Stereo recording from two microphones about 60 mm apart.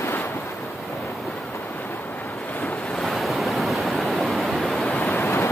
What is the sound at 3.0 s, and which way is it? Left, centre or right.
Waves, centre.